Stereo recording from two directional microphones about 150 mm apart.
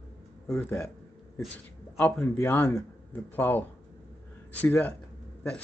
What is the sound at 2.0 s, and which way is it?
Speech, 15° left (ahead or behind).